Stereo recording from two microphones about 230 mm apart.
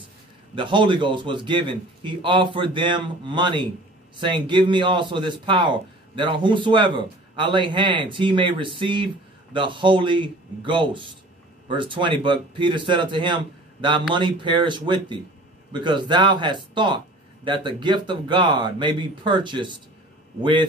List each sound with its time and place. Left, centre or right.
0.6 s speech: right